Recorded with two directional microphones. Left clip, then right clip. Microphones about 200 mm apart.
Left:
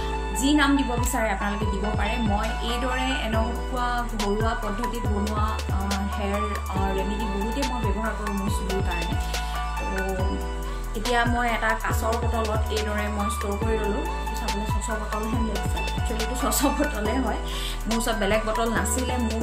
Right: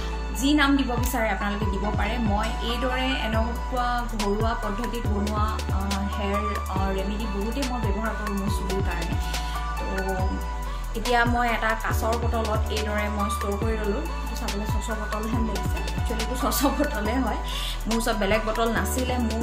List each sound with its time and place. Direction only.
0.4 s music: centre (ahead or behind)
7.5 s music: centre (ahead or behind)
11.1 s music: centre (ahead or behind)
16.4 s music: centre (ahead or behind)